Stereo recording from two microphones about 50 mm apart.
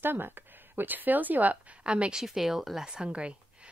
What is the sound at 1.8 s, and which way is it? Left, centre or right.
Speech, right.